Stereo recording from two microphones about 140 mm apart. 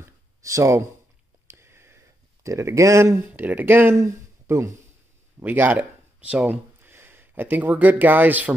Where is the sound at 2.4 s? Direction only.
20° right (ahead or behind).